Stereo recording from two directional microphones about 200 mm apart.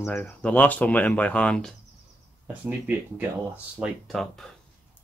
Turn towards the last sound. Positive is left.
turn(degrees=0)  # may be behind; listen again after turning